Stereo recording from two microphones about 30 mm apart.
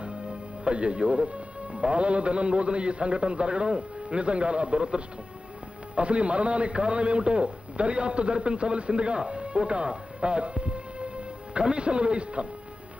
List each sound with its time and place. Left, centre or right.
0.0 s a man's voice: right